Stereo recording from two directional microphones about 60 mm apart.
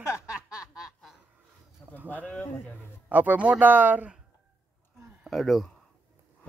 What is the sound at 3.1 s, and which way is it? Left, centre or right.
Speech, right.